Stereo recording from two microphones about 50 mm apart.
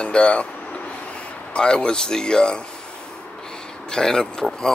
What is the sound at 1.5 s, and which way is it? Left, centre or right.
Speech, centre.